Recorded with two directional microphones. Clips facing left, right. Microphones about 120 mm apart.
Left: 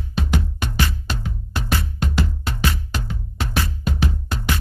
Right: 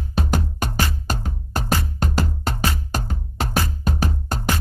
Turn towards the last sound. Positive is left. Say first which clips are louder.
# right 1 dB
turn(degrees=-45)  # may be behind; listen again after turning